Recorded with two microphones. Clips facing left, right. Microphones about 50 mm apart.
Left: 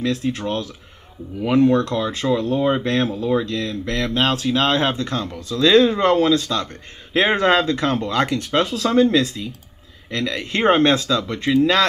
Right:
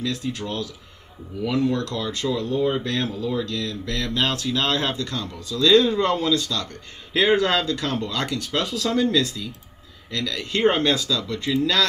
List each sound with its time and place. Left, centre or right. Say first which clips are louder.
0.0 s speech: left 5 dB; left
2.4 s speech: left 1 dB; left
2.8 s speech: left 5 dB; left